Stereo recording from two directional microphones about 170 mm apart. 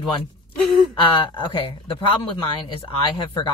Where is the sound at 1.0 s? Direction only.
30° left (ahead or behind).